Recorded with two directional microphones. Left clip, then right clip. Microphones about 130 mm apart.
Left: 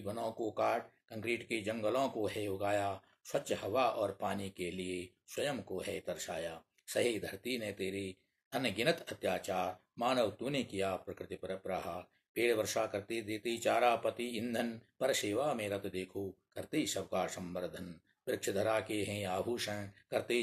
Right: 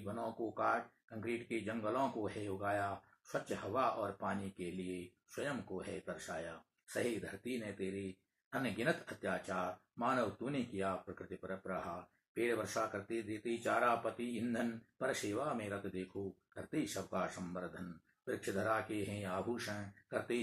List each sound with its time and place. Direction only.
0.0 s speech: 25° left (ahead or behind)